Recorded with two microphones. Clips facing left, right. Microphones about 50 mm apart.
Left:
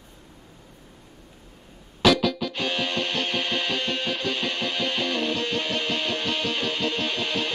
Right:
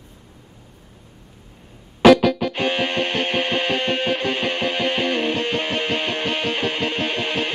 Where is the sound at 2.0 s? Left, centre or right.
Right.